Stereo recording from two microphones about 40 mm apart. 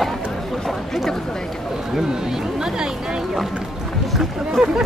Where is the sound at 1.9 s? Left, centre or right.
Centre.